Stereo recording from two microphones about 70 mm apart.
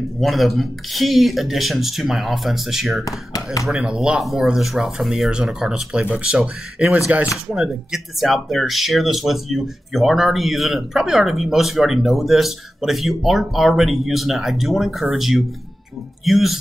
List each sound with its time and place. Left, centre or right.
0.2 s speech: centre
7.5 s speech: centre